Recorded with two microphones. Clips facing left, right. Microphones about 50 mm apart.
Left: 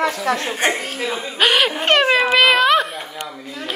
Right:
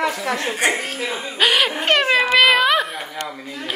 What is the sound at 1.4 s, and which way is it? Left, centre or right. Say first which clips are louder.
Speech: left 1 dB; centre.